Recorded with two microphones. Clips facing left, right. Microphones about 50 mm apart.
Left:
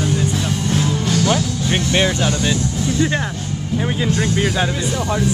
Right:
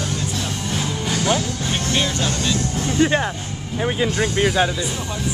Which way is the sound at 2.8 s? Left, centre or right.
Right.